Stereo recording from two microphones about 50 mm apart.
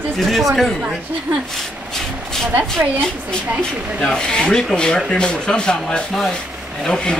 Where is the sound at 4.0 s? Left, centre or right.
Centre.